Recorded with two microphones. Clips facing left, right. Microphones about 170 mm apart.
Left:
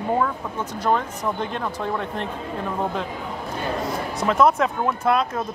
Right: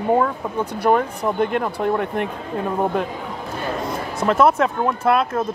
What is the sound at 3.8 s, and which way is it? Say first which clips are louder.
Speech: right 4 dB; centre (ahead or behind).